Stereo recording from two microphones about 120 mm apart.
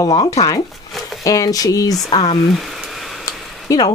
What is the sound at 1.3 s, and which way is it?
Speech, 30° left (ahead or behind).